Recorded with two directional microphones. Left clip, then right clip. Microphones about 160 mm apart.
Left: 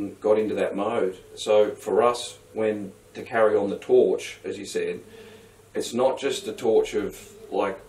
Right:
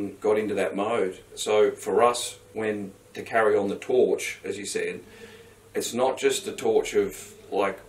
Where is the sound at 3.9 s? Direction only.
10° right (ahead or behind).